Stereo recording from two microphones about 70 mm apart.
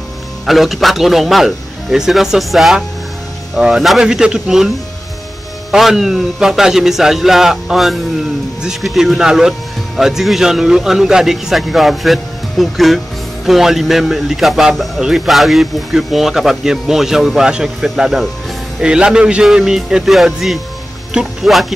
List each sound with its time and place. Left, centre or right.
0.5 s a man's voice: centre